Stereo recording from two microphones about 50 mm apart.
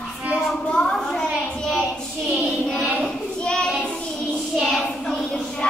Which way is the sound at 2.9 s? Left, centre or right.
Centre.